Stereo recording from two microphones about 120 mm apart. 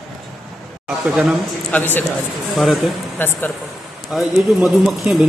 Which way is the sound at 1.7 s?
15° left (ahead or behind).